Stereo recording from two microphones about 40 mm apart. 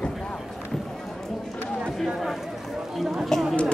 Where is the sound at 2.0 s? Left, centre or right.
Centre.